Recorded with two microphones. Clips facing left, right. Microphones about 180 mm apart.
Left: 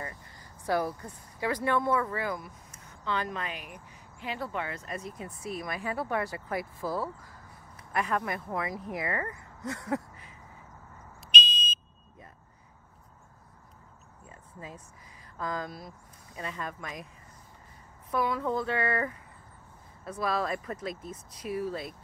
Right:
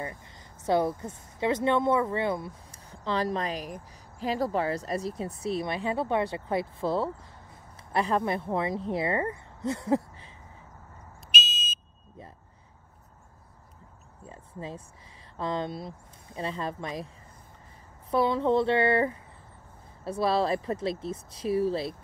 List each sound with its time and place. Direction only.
0.0 s speech: 20° right (ahead or behind)
11.3 s fire alarm: 5° right (ahead or behind)
14.2 s a sound: 30° right (ahead or behind)
15.3 s speech: 30° right (ahead or behind)
18.1 s speech: 30° right (ahead or behind)